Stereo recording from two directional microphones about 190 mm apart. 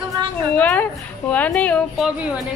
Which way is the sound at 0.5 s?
10° left (ahead or behind).